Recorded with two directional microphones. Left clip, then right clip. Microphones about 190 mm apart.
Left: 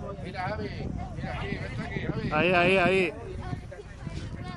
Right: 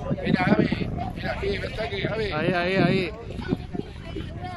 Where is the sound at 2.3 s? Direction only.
5° left (ahead or behind).